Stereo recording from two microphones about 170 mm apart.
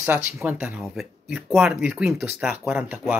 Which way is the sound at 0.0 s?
10° right (ahead or behind).